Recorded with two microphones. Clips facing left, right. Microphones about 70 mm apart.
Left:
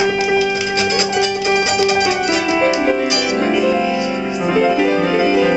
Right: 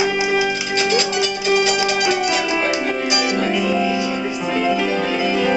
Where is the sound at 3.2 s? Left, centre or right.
Centre.